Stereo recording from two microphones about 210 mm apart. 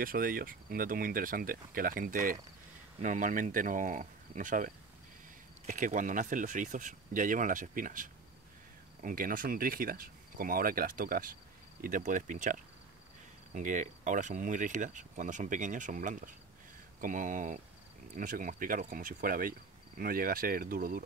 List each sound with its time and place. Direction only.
0.0 s speech: 40° right (ahead or behind)